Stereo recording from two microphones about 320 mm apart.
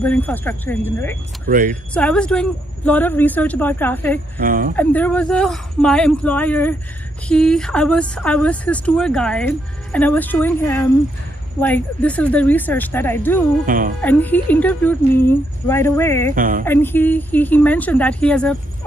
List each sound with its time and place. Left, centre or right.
0.0 s speech: centre
1.4 s speech: right
2.0 s speech: centre
4.4 s speech: right
4.7 s speech: centre
13.7 s speech: right
14.0 s speech: centre
16.3 s speech: right
16.6 s speech: centre